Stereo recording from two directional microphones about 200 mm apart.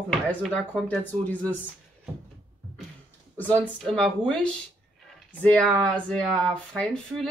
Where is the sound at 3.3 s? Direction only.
10° left (ahead or behind).